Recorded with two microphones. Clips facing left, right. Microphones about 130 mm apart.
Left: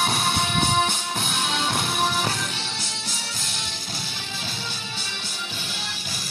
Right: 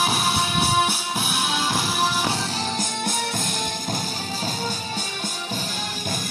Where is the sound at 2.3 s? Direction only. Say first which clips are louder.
Right 6 dB; 35° right (ahead or behind).